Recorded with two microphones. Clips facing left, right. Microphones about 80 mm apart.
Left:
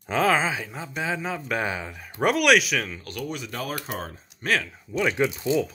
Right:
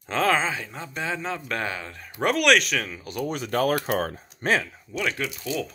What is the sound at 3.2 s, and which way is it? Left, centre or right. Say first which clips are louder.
Speech: right 8 dB; right.